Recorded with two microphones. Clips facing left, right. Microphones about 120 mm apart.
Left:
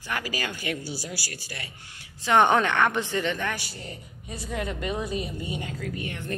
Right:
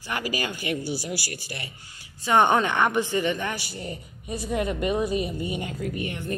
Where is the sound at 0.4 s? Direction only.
10° right (ahead or behind).